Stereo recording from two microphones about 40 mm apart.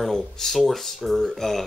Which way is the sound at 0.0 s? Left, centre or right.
Centre.